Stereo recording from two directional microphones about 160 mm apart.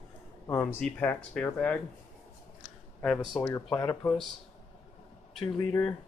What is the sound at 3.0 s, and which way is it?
Speech, 10° left (ahead or behind).